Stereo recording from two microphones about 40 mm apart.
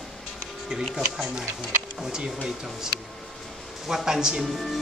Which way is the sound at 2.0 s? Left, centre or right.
Centre.